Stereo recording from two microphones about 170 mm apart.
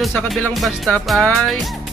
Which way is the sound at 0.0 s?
Centre (ahead or behind).